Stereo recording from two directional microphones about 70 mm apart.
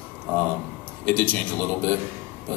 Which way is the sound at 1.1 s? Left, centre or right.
Left.